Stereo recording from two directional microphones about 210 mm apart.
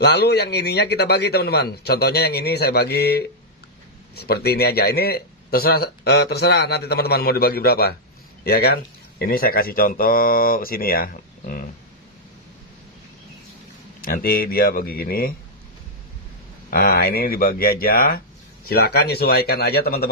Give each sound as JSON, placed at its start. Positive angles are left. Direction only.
{"t": 0.0, "sound": "speech", "side_deg": 50}
{"t": 14.0, "sound": "speech", "side_deg": 45}
{"t": 16.7, "sound": "speech", "side_deg": 45}